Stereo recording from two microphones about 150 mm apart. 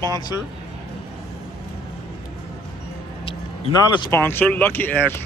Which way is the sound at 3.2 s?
35° left (ahead or behind).